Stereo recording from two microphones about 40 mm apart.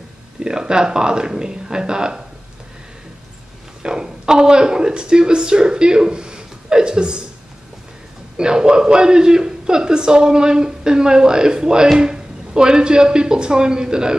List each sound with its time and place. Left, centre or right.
0.4 s a man's voice: centre
3.8 s speech: centre
8.4 s a man's voice: centre